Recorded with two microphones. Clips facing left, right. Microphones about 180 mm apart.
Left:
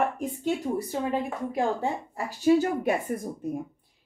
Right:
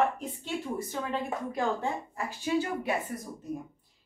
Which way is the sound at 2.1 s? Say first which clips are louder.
Left 10 dB; 40° left (ahead or behind).